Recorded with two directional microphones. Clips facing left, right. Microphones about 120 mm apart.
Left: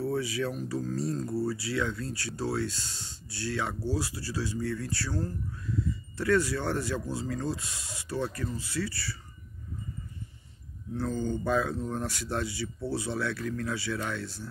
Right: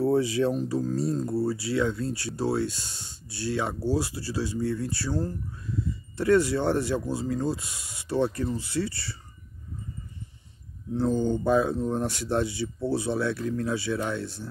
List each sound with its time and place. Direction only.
0.1 s speech: 25° right (ahead or behind)
10.9 s speech: 20° right (ahead or behind)